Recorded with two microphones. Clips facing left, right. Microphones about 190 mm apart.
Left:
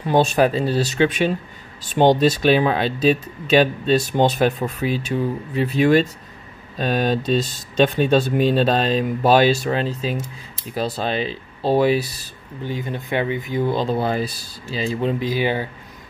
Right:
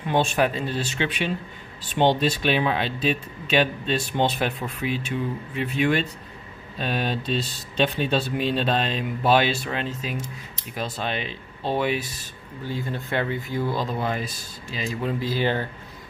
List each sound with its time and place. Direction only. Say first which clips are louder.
0.0 s speech: left 5 dB; 40° left (ahead or behind)
12.6 s speech: left 3 dB; 20° left (ahead or behind)